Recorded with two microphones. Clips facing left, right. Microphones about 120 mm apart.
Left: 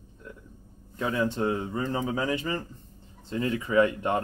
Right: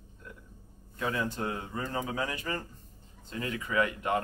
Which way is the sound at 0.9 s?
25° left (ahead or behind).